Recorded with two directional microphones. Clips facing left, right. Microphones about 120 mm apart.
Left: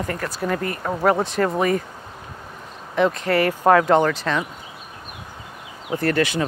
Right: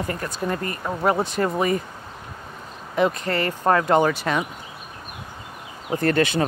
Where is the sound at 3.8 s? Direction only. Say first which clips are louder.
Left 1 dB; 5° right (ahead or behind).